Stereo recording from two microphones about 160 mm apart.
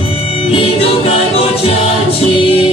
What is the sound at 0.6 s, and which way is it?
Music, 40° left (ahead or behind).